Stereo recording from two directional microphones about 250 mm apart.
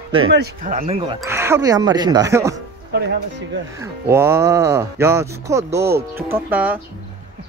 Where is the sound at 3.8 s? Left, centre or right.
Centre.